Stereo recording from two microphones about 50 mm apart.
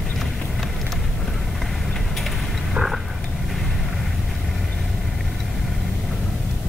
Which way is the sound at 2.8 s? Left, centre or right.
Right.